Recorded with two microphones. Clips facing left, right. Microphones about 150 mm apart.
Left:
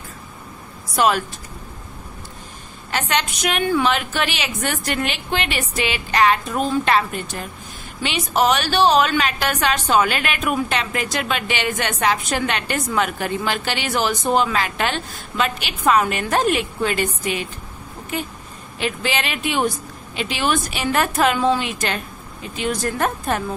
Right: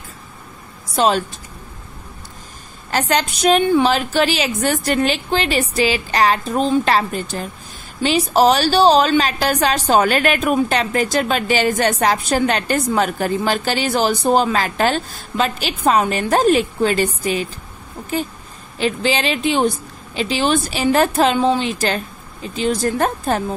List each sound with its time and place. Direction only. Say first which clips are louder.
0.9 s speech: right 2 dB; 30° right (ahead or behind)
2.9 s a woman's voice: right 4 dB; 35° right (ahead or behind)
18.8 s a woman's voice: right 5 dB; 30° right (ahead or behind)